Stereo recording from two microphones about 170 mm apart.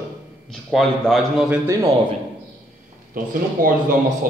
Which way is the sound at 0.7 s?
Centre (ahead or behind).